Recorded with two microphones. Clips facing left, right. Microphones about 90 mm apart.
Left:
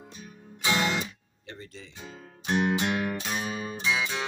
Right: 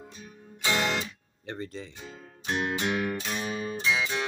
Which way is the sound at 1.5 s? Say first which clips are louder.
Right 7 dB; 50° right (ahead or behind).